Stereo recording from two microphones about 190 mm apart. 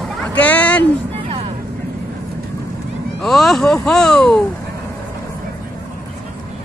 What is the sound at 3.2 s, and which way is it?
Speech, centre (ahead or behind).